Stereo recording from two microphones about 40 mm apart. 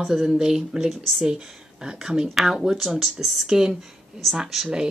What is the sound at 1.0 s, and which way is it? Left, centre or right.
Speech, centre.